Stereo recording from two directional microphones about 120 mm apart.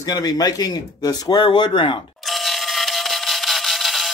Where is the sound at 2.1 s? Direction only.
Centre (ahead or behind).